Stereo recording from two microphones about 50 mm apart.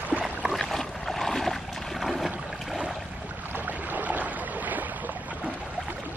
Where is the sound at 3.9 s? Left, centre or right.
Right.